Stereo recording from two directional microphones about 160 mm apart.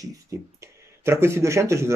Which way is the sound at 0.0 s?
20° right (ahead or behind).